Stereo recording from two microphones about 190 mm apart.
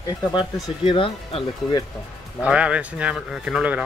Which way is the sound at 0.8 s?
25° left (ahead or behind).